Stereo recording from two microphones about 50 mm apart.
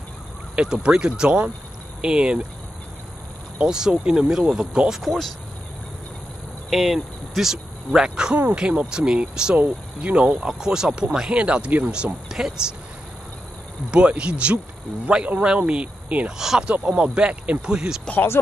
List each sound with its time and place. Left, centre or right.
0.6 s speech: centre
3.5 s speech: centre
5.0 s speech: centre
6.7 s speech: centre
13.8 s speech: right
16.3 s speech: centre
16.6 s speech: right
18.1 s speech: left